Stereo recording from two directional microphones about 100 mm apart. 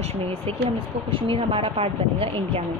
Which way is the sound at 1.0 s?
65° right (ahead or behind).